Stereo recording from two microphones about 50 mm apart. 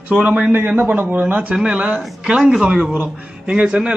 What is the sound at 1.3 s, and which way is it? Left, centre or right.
Speech, right.